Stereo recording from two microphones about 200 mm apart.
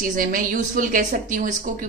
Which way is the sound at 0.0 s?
45° right (ahead or behind).